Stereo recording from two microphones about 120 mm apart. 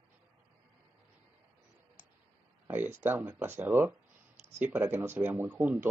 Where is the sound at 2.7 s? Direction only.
15° right (ahead or behind).